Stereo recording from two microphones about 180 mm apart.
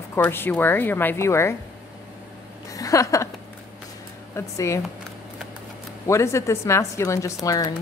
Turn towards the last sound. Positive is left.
turn(degrees=20)  # may be behind; listen again after turning